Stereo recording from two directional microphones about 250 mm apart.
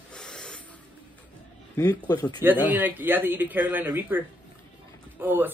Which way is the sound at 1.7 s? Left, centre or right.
Centre.